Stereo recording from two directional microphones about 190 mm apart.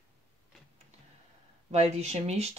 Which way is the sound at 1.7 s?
35° right (ahead or behind).